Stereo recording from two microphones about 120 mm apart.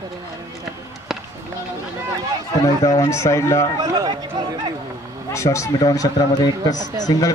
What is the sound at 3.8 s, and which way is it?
Speech, 35° right (ahead or behind).